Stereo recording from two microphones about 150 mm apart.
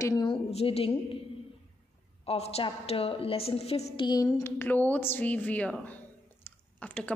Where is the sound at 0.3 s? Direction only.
40° left (ahead or behind).